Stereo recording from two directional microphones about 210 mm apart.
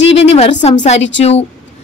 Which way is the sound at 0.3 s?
30° left (ahead or behind).